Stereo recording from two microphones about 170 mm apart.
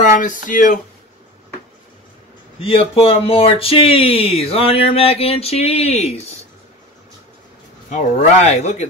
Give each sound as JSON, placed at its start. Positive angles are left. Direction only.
{"t": 0.0, "sound": "speech", "side_deg": 50}
{"t": 2.6, "sound": "speech", "side_deg": 35}
{"t": 7.9, "sound": "speech", "side_deg": 40}